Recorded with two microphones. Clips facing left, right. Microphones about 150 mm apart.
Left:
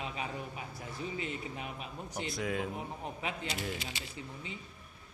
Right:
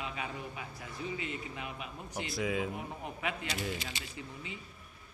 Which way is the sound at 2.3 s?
Centre (ahead or behind).